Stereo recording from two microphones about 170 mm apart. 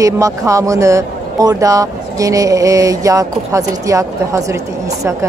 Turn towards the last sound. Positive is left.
turn(degrees=-15)  # may be behind; listen again after turning